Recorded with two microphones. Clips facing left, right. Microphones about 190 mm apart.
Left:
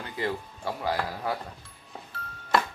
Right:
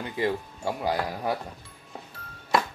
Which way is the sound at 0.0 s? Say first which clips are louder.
Right 4 dB; 20° right (ahead or behind).